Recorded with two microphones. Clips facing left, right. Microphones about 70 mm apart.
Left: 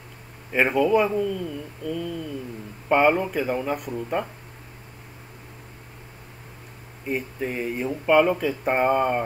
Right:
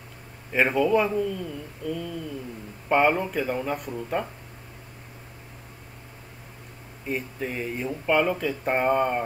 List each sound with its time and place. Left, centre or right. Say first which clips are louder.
0.5 s speech: left 2 dB; centre
7.1 s speech: left 2 dB; centre